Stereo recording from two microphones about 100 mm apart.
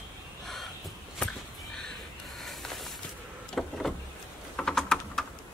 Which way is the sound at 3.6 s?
10° left (ahead or behind).